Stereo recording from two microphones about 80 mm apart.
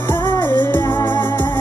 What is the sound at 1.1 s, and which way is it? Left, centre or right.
Music, left.